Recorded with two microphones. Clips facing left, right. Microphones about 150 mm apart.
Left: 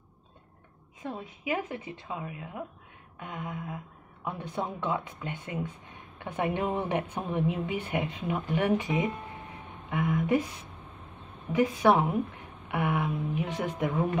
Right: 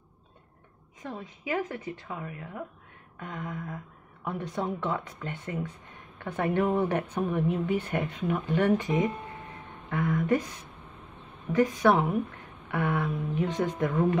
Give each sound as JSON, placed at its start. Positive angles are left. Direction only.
{"t": 1.2, "sound": "speech", "side_deg": 20}
{"t": 11.5, "sound": "speech", "side_deg": 10}